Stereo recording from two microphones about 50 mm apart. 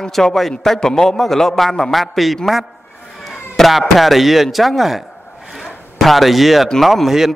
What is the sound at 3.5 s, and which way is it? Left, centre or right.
A man's voice, centre.